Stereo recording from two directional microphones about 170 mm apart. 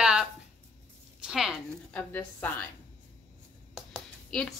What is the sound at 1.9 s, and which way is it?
Speech, 10° left (ahead or behind).